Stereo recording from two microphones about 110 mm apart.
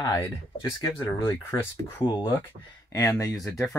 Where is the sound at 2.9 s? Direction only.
30° left (ahead or behind).